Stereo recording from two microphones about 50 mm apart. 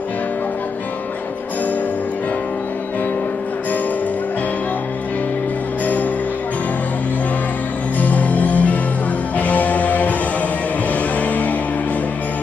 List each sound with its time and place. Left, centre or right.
8.0 s music: left
11.1 s music: left